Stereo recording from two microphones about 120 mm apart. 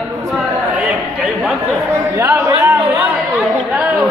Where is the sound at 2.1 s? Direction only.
25° right (ahead or behind).